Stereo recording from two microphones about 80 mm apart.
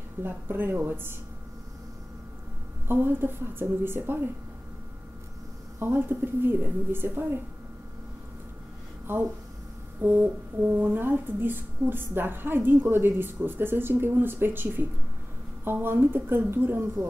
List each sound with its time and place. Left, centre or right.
0.2 s speech: right
2.9 s speech: right
5.8 s speech: right
10.0 s speech: right